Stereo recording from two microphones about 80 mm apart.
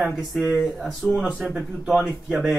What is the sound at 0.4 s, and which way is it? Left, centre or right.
Speech, centre.